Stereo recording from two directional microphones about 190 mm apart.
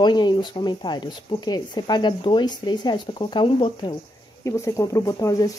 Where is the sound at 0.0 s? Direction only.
25° left (ahead or behind).